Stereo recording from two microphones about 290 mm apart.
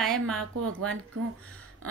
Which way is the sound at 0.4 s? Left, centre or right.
Right.